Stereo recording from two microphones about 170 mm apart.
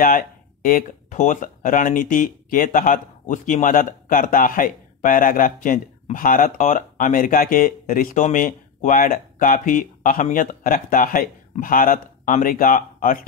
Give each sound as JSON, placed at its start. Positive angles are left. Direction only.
{"t": 0.0, "sound": "speech", "side_deg": 55}